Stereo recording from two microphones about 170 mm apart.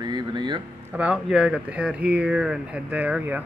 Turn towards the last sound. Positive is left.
turn(degrees=-10)  # may be behind; listen again after turning